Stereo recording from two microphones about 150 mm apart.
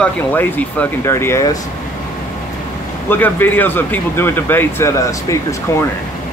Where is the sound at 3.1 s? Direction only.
15° left (ahead or behind).